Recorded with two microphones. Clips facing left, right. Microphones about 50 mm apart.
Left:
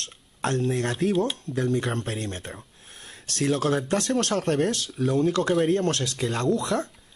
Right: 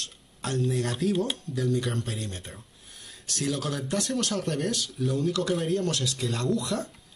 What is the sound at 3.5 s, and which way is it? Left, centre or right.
Speech, left.